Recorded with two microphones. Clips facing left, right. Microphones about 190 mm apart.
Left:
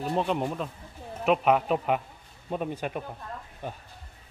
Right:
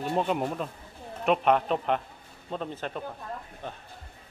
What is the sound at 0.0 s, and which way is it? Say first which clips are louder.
A man's voice: even; centre (ahead or behind).